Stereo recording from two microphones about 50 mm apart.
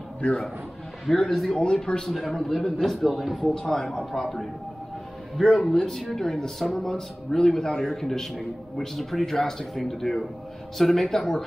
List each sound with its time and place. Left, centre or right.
1.0 s a man's voice: centre
1.6 s speech: centre
2.0 s a man's voice: centre